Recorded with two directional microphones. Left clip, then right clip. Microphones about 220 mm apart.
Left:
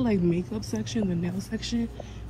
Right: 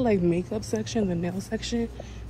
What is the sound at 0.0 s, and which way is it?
A woman's voice, 10° left (ahead or behind).